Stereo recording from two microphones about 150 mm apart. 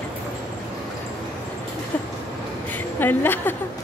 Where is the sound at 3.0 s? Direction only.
15° left (ahead or behind).